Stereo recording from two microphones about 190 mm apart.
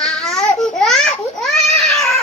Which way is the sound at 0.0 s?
5° left (ahead or behind).